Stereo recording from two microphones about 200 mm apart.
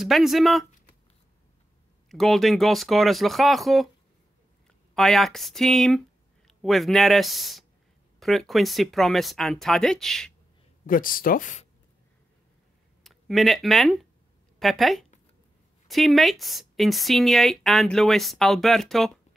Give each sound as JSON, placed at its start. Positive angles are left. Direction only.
{"t": 0.0, "sound": "speech", "side_deg": 0}
{"t": 2.0, "sound": "speech", "side_deg": 0}
{"t": 4.9, "sound": "speech", "side_deg": 0}
{"t": 10.9, "sound": "speech", "side_deg": 45}
{"t": 13.0, "sound": "speech", "side_deg": 0}